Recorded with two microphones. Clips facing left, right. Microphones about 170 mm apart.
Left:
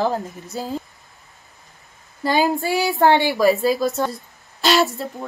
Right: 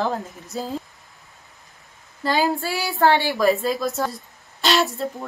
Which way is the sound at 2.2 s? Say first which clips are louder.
Left 2 dB; 15° left (ahead or behind).